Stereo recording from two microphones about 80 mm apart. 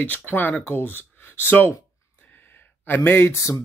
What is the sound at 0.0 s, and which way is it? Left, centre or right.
Speech, left.